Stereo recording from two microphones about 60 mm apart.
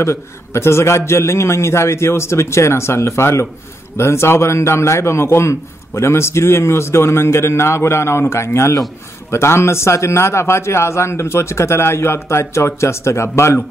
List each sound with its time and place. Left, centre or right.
0.0 s a man's voice: left